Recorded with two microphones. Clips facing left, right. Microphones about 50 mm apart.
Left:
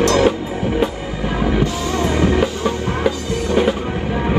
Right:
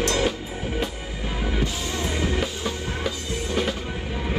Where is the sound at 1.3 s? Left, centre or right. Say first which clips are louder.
Left 9 dB; left.